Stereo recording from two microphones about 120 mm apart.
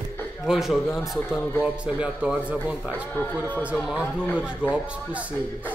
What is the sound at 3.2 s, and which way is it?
Speech, 15° left (ahead or behind).